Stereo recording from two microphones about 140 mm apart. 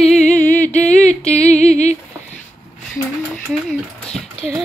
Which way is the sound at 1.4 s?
50° left (ahead or behind).